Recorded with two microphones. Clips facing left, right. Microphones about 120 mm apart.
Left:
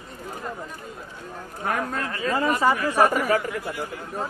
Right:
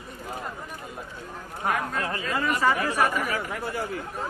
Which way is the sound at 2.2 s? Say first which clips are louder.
Left 4 dB; 35° left (ahead or behind).